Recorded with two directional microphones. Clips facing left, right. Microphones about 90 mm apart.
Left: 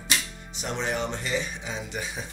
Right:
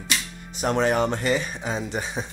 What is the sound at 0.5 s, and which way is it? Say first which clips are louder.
Speech: right 8 dB; 50° right (ahead or behind).